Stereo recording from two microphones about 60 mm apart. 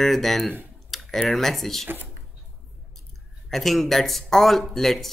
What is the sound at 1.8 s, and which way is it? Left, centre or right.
Speech, right.